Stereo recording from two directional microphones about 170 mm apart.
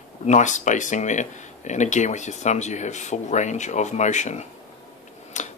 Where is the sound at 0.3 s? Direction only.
45° left (ahead or behind).